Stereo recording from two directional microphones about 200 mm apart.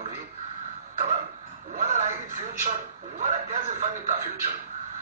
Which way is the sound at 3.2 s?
40° right (ahead or behind).